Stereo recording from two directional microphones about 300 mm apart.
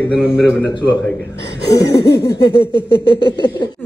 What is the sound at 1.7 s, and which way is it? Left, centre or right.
Speech, centre.